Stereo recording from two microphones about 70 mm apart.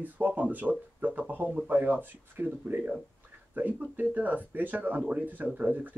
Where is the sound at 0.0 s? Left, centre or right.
Right.